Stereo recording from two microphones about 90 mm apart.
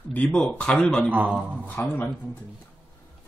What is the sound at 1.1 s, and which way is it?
Speech, 15° right (ahead or behind).